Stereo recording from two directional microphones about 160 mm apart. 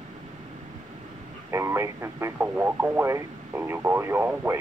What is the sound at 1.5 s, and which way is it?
Speech, 15° right (ahead or behind).